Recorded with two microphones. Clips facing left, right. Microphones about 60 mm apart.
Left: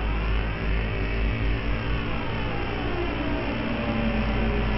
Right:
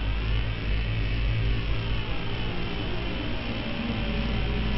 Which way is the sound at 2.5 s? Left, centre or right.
Left.